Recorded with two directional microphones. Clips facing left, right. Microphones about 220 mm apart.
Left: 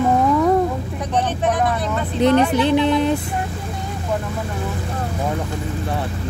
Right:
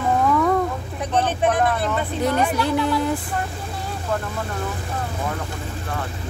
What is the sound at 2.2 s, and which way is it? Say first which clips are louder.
Speech: left 7 dB; 20° left (ahead or behind).